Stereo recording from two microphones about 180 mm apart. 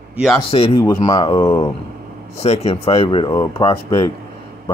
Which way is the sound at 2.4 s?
35° left (ahead or behind).